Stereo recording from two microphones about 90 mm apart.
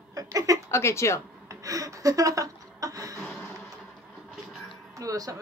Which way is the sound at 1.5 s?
40° right (ahead or behind).